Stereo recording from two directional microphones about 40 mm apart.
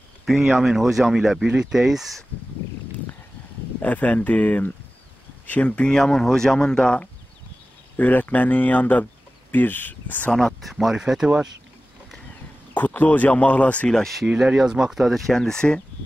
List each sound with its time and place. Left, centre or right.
0.2 s a sound: centre
0.6 s speech: centre
1.4 s speech: centre
1.8 s speech: centre
3.8 s speech: left
5.9 s speech: centre
8.0 s speech: left
9.5 s speech: left
10.6 s speech: centre
12.7 s speech: left
14.2 s speech: centre
15.0 s speech: centre